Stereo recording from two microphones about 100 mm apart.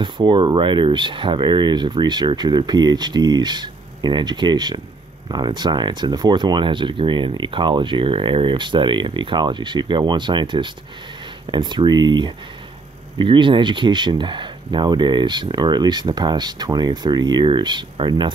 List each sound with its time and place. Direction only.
0.0 s speech: 50° right (ahead or behind)